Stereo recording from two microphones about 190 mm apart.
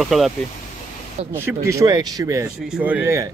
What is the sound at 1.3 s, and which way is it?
Speech, 15° right (ahead or behind).